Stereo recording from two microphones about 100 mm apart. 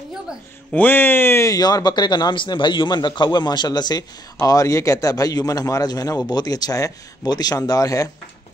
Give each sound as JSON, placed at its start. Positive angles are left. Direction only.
{"t": 0.7, "sound": "speech", "side_deg": 20}
{"t": 1.5, "sound": "a man's voice", "side_deg": 40}